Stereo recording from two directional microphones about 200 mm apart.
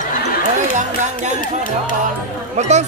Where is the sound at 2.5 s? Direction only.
35° right (ahead or behind).